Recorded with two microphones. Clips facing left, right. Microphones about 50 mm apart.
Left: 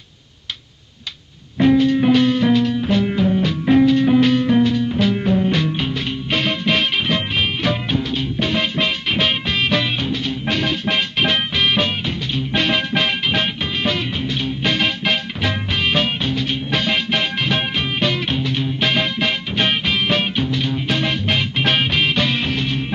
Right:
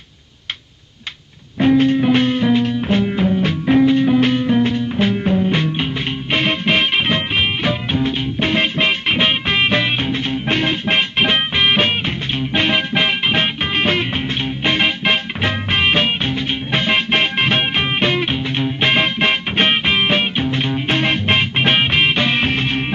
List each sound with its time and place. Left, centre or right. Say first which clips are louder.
1.8 s music: even; right